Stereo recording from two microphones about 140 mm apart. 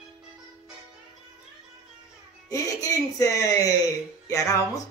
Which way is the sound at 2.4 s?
25° left (ahead or behind).